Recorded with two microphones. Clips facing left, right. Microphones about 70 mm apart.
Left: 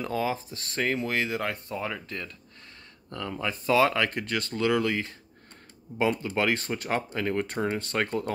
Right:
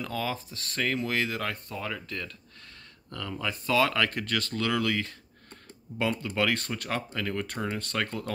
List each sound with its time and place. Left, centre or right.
0.0 s speech: left